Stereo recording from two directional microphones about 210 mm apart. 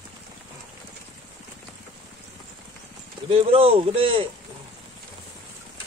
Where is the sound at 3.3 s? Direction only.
25° right (ahead or behind).